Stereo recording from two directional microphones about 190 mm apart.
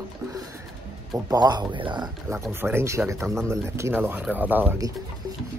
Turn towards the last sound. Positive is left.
turn(degrees=-15)  # may be behind; listen again after turning